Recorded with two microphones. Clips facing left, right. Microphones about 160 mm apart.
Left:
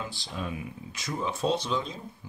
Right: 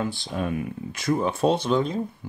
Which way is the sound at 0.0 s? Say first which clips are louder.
Right 8 dB; 55° right (ahead or behind).